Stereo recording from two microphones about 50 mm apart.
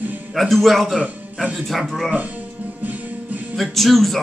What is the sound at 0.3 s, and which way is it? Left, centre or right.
Speech, centre.